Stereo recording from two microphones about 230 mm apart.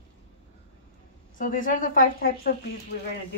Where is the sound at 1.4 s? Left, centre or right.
Left.